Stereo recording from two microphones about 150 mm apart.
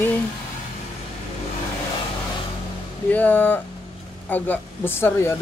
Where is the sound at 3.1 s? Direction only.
10° left (ahead or behind).